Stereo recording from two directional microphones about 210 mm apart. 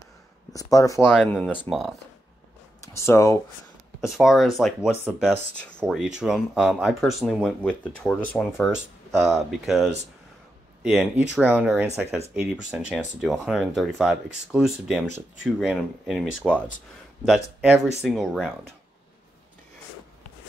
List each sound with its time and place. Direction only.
0.5 s speech: 15° left (ahead or behind)
1.0 s speech: centre (ahead or behind)
2.8 s speech: 15° left (ahead or behind)
4.1 s speech: centre (ahead or behind)
10.8 s speech: centre (ahead or behind)